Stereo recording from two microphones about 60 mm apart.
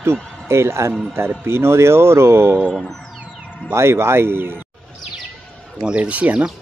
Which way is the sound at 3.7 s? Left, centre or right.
Right.